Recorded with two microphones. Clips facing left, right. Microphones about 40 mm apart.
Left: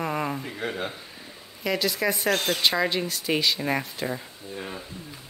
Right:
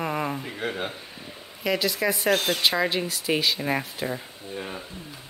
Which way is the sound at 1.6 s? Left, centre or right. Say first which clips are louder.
Right 1 dB; centre.